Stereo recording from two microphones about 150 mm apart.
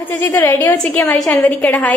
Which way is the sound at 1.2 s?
20° left (ahead or behind).